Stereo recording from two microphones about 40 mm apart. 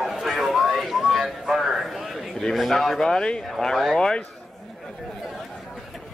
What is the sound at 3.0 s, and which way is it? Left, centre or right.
Speech, centre.